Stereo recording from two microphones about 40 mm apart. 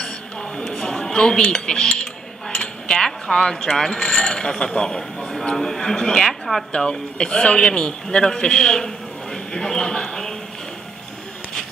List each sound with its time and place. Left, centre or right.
0.0 s dishes: left
3.3 s mechanisms: centre
6.2 s speech: centre
6.7 s a man's voice: left